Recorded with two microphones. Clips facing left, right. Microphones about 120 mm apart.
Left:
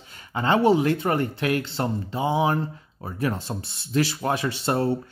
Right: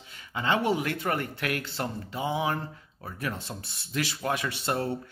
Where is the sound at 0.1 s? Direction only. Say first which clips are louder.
Left 5 dB; 40° left (ahead or behind).